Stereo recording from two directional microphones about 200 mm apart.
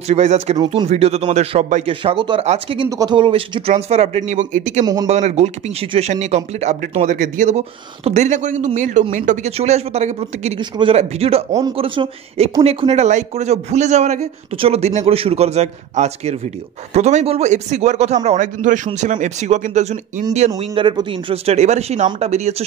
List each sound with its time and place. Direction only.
0.1 s speech: 35° right (ahead or behind)
20.5 s speech: 20° right (ahead or behind)